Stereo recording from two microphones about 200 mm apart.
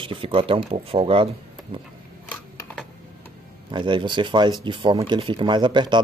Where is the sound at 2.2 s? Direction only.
5° left (ahead or behind).